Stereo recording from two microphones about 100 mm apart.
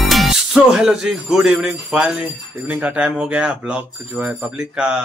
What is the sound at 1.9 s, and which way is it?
Speech, 10° right (ahead or behind).